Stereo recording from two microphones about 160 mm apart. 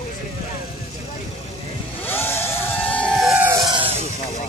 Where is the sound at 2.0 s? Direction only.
15° left (ahead or behind).